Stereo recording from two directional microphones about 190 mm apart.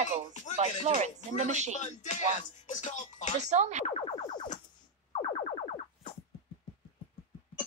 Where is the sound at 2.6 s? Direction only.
40° left (ahead or behind).